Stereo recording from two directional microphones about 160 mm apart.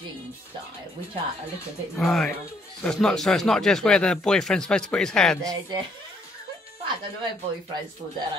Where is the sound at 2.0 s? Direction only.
Centre (ahead or behind).